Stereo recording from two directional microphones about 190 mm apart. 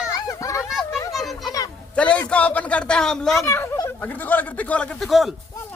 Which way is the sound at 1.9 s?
5° left (ahead or behind).